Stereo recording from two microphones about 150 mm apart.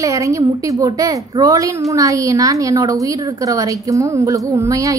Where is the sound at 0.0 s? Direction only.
20° right (ahead or behind).